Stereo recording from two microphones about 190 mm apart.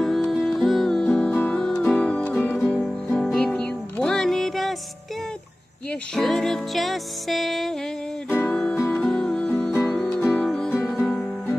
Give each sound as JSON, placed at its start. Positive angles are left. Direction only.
{"t": 0.0, "sound": "music", "side_deg": 0}
{"t": 5.9, "sound": "music", "side_deg": 0}